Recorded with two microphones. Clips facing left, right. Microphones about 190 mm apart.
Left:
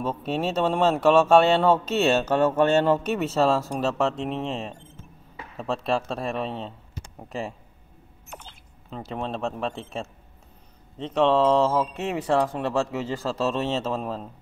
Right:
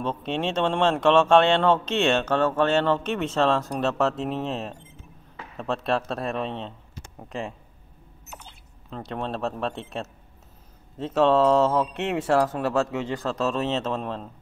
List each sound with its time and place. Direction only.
0.0 s speech: 5° left (ahead or behind)
8.9 s speech: centre (ahead or behind)